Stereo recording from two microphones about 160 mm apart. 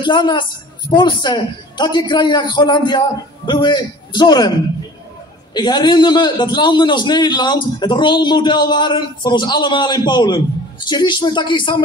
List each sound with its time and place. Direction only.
0.0 s a man's voice: 30° left (ahead or behind)
5.5 s a man's voice: 25° left (ahead or behind)